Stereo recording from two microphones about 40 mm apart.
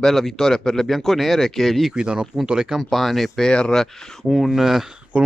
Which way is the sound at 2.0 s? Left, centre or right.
Right.